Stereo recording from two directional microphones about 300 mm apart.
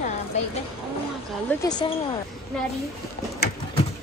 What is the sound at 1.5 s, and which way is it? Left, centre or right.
Speech, centre.